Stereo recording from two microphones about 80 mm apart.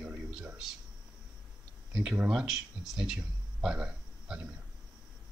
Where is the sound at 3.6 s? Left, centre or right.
Centre.